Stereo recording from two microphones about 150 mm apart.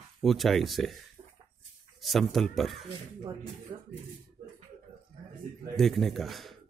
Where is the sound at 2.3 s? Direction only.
Centre (ahead or behind).